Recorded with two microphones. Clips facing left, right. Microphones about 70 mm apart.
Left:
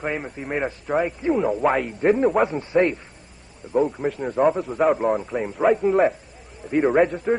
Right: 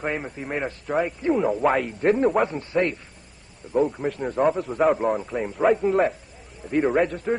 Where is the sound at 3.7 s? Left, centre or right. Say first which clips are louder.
Left 1 dB; centre.